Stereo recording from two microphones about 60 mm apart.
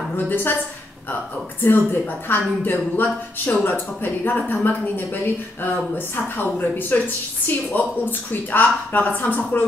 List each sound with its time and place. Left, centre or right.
0.3 s a woman's voice: left
1.6 s a woman's voice: left